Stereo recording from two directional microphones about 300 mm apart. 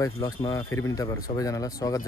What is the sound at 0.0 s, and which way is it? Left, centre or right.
Speech, centre.